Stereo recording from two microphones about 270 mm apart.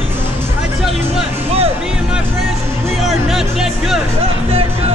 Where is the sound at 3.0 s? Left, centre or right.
Centre.